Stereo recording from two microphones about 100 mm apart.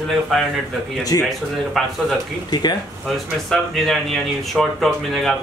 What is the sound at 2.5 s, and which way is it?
Speech, 45° left (ahead or behind).